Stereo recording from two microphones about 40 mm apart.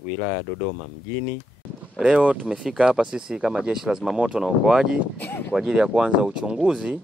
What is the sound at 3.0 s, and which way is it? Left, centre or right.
Speech, right.